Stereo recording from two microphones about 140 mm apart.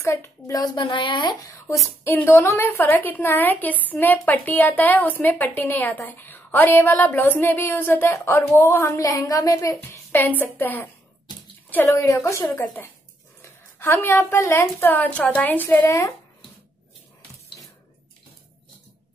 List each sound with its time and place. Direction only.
0.0 s a child's voice: 20° left (ahead or behind)
2.0 s a woman's voice: 15° left (ahead or behind)